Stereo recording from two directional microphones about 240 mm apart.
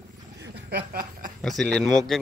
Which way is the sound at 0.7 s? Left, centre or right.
Right.